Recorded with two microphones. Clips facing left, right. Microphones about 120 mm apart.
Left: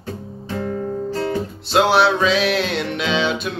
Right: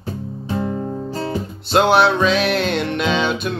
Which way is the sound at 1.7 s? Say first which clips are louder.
Right 1 dB; centre (ahead or behind).